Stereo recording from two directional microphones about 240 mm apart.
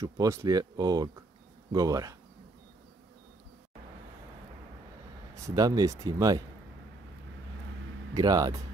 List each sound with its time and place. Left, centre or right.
0.0 s speech: centre
5.3 s speech: centre
8.1 s speech: centre